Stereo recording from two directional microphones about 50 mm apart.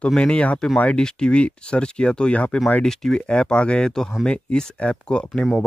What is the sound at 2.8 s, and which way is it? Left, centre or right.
Speech, centre.